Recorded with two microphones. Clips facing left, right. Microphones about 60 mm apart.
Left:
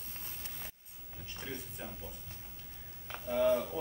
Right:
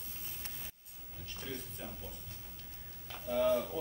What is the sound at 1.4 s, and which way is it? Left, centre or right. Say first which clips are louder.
Speech: left 1 dB; left.